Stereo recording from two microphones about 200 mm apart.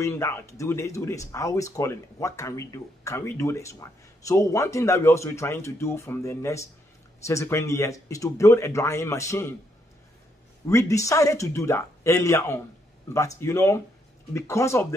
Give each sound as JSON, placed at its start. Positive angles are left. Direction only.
{"t": 0.0, "sound": "speech", "side_deg": 15}
{"t": 10.7, "sound": "speech", "side_deg": 15}